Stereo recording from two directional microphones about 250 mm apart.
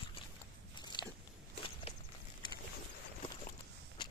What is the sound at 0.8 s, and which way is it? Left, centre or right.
Biting, centre.